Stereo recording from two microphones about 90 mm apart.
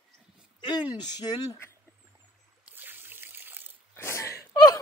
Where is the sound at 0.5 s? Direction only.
55° left (ahead or behind).